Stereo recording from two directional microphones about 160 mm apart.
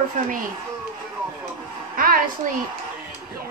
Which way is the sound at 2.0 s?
60° right (ahead or behind).